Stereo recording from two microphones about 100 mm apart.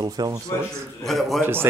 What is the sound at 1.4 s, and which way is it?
Speech, 20° right (ahead or behind).